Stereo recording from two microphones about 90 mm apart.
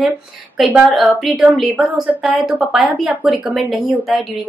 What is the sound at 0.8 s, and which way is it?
A woman's voice, 5° right (ahead or behind).